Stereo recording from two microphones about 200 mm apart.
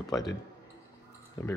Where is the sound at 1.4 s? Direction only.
15° left (ahead or behind).